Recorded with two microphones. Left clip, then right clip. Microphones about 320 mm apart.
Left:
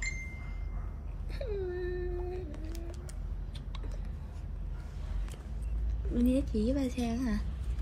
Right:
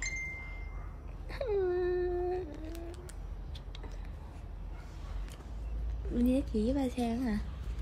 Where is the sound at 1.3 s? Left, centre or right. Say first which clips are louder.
Right 5 dB; centre.